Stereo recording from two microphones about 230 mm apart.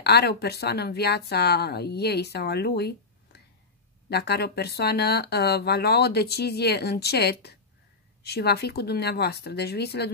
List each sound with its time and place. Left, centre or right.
0.0 s speech: left
4.1 s speech: left